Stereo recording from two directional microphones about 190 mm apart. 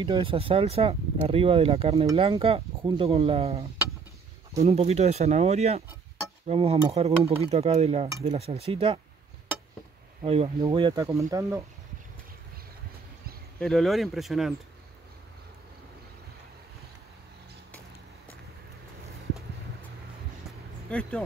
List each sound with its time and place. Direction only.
0.0 s speech: 25° right (ahead or behind)
10.2 s speech: 30° right (ahead or behind)
13.6 s speech: centre (ahead or behind)
20.9 s speech: 5° left (ahead or behind)